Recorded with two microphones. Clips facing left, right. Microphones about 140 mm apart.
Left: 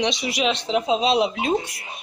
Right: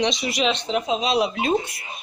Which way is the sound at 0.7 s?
25° left (ahead or behind).